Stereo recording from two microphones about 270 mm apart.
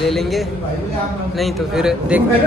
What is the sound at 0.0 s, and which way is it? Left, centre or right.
A man's voice, centre.